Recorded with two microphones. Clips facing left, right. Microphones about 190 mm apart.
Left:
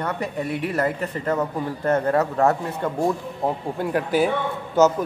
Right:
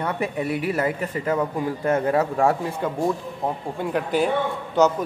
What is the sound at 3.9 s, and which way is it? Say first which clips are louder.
Speech: left 1 dB; 5° left (ahead or behind).